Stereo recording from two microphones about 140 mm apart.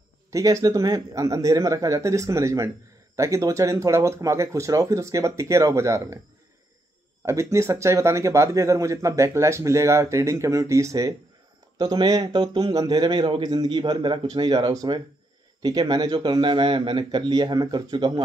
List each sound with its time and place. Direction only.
0.3 s speech: 25° right (ahead or behind)
7.2 s speech: 20° right (ahead or behind)